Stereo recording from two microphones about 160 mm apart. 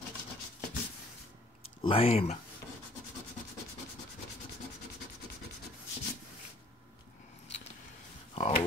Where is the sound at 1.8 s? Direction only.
35° left (ahead or behind).